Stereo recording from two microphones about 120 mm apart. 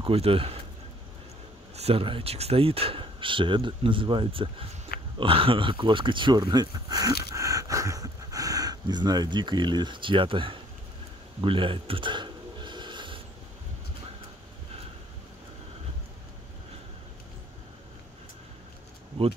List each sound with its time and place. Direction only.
0.0 s speech: 50° right (ahead or behind)
1.8 s speech: 55° right (ahead or behind)
11.4 s a sound: 45° right (ahead or behind)